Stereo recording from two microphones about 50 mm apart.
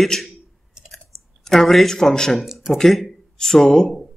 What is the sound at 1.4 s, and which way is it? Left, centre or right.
Speech, centre.